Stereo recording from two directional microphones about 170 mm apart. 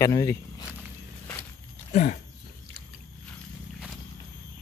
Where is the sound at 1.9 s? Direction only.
45° left (ahead or behind).